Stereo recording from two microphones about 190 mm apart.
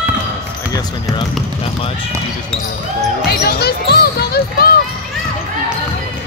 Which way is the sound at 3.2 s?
55° left (ahead or behind).